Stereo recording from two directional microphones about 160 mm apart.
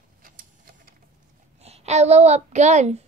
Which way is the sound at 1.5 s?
40° right (ahead or behind).